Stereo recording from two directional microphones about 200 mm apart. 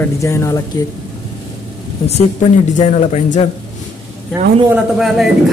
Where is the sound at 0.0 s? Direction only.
15° left (ahead or behind).